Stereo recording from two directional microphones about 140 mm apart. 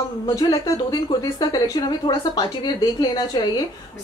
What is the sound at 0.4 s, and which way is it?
A woman's voice, 25° left (ahead or behind).